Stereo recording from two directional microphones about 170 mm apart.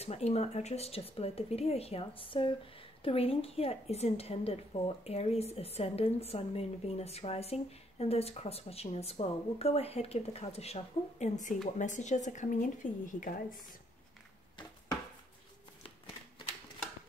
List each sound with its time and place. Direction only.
0.0 s speech: 40° left (ahead or behind)